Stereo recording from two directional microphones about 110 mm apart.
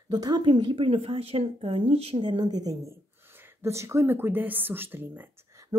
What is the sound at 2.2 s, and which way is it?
Speech, 45° right (ahead or behind).